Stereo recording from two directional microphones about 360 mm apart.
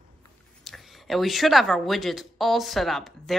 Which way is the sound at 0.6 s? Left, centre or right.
Centre.